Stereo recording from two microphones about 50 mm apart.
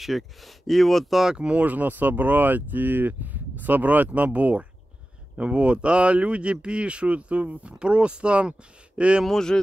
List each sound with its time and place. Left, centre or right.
0.0 s speech: centre
1.2 s speech: centre
1.6 s speech: right
9.2 s speech: centre